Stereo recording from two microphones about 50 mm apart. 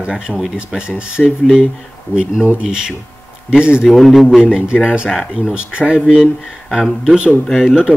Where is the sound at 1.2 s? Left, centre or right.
Centre.